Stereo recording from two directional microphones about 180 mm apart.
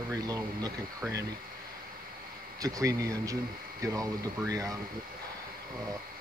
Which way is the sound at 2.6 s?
20° right (ahead or behind).